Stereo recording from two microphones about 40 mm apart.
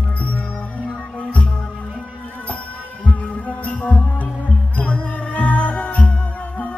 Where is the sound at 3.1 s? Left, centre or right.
Left.